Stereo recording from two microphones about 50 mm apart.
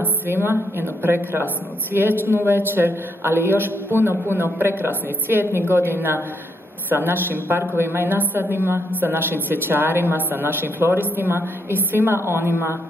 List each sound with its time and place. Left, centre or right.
0.3 s a woman's voice: right
1.4 s a woman's voice: right
4.1 s a woman's voice: right
6.9 s a woman's voice: right
12.3 s speech: right